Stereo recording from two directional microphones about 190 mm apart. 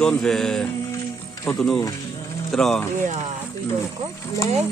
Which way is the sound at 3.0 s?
40° right (ahead or behind).